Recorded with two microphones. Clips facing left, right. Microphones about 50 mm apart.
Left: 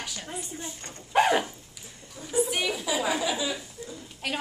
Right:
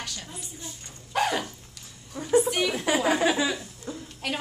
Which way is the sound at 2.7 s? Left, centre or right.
Right.